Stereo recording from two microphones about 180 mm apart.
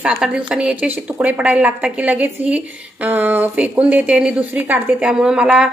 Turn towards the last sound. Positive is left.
turn(degrees=-5)  # may be behind; listen again after turning